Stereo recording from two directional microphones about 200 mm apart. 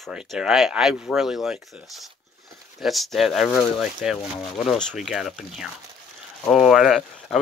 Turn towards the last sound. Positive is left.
turn(degrees=0)  # may be behind; listen again after turning